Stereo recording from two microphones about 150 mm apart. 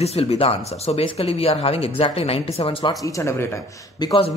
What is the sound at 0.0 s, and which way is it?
Speech, 45° left (ahead or behind).